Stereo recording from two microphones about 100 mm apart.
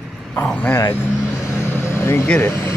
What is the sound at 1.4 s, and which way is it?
Vehicle, 25° left (ahead or behind).